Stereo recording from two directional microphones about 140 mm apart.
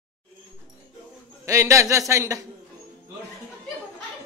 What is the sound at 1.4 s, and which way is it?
A man's voice, 20° right (ahead or behind).